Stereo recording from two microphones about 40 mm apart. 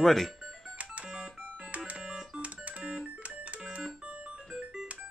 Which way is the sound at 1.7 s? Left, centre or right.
Centre.